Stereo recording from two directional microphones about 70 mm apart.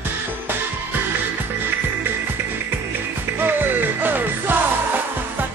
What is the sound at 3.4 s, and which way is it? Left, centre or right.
Music, right.